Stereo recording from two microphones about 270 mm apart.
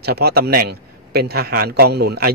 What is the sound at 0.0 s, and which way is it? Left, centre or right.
A man's voice, right.